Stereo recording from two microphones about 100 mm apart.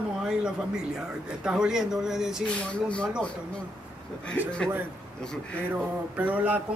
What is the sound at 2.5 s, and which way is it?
Speech, 10° left (ahead or behind).